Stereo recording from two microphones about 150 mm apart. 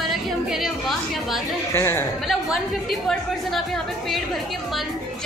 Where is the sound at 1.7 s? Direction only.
15° left (ahead or behind).